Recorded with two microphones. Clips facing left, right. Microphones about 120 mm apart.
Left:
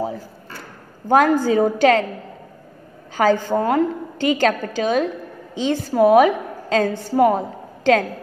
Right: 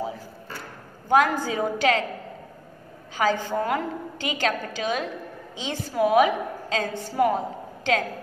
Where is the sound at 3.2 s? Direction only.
45° left (ahead or behind).